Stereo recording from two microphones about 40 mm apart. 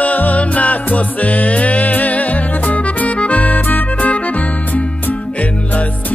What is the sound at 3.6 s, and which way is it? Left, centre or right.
Music, left.